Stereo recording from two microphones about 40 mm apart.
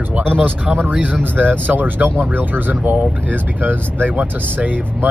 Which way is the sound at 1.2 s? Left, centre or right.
Right.